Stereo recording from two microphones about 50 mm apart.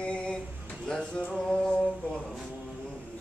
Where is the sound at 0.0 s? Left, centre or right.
Left.